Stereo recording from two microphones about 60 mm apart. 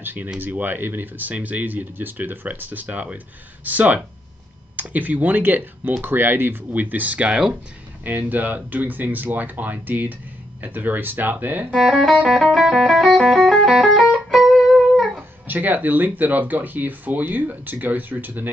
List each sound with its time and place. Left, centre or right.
0.0 s speech: right
11.7 s music: centre
15.4 s speech: right